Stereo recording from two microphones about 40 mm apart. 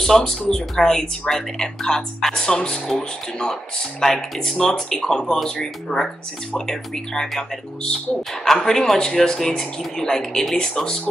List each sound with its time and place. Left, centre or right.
0.0 s a man's voice: centre
10.6 s speech: centre